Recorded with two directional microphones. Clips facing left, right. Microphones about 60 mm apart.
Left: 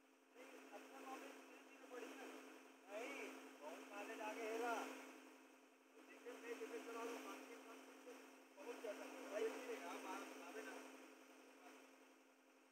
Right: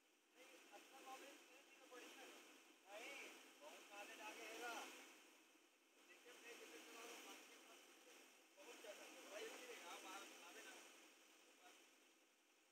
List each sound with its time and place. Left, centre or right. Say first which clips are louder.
0.4 s boat: left 7 dB; left
1.9 s a sound: left 7 dB; left
6.2 s vehicle: left 11 dB; left